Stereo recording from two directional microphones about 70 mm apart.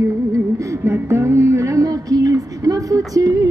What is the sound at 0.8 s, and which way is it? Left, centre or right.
Speech, right.